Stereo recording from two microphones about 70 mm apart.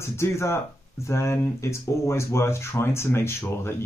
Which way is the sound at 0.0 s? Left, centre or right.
Left.